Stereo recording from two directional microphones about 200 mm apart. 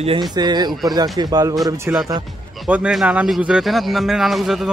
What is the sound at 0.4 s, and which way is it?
Speech, 20° right (ahead or behind).